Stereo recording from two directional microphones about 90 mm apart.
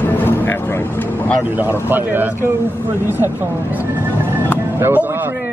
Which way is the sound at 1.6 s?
25° right (ahead or behind).